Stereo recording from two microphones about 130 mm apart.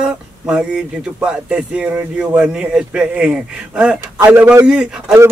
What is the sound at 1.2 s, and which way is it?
A man's voice, 10° right (ahead or behind).